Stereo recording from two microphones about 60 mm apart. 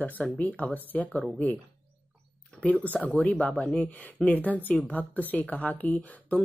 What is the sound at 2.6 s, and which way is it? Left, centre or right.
Speech, left.